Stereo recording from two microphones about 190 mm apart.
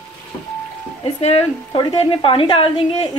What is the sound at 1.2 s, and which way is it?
A woman's voice, 35° left (ahead or behind).